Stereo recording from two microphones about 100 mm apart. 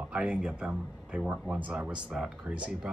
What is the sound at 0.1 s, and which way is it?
Speech, 15° right (ahead or behind).